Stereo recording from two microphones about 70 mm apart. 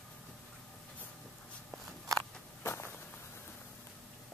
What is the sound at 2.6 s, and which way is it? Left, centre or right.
Walk, left.